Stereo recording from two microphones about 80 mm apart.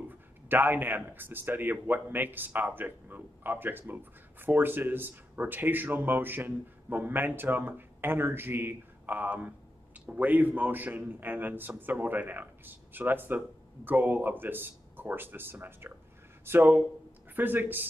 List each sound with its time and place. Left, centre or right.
0.1 s a man's voice: right